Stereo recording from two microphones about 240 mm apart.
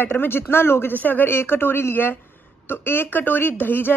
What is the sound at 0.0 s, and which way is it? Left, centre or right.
A woman's voice, centre.